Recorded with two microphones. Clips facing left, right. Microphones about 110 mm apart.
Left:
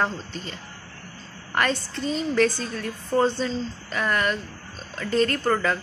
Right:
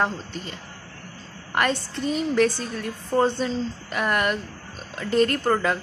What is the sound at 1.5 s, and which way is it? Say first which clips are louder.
A woman's voice: right 1 dB; 10° right (ahead or behind).